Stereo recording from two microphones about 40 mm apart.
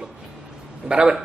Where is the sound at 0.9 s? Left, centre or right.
Right.